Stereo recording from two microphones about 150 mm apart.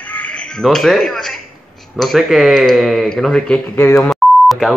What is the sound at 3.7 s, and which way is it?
Speech, 15° left (ahead or behind).